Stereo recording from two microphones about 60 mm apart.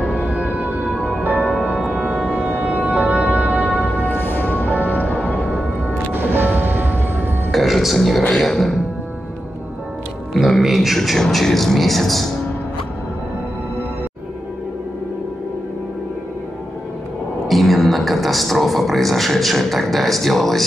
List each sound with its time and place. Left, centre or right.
0.3 s music: centre
1.7 s music: centre
3.9 s music: left
6.1 s music: right
7.5 s music: centre
8.4 s speech: centre
10.3 s speech: centre
17.5 s speech: centre